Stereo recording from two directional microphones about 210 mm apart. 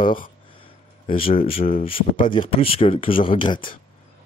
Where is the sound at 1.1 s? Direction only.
25° left (ahead or behind).